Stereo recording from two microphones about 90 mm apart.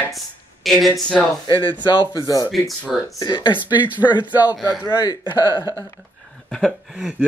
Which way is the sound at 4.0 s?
20° left (ahead or behind).